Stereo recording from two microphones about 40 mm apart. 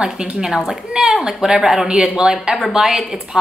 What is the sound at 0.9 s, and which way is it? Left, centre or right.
Speech, centre.